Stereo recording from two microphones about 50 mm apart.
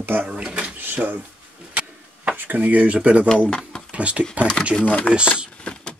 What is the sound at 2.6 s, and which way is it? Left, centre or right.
Speech, right.